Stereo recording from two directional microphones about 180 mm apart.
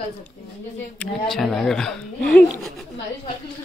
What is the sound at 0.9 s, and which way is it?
A man's voice, centre (ahead or behind).